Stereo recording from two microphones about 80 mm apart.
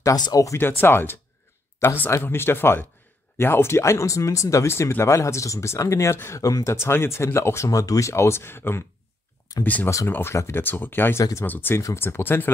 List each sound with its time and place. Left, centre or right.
0.0 s speech: left
0.6 s speech: left
6.4 s speech: left; by 9.8 s centre
9.8 s speech: left